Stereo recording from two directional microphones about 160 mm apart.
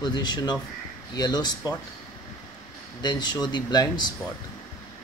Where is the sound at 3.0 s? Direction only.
25° left (ahead or behind).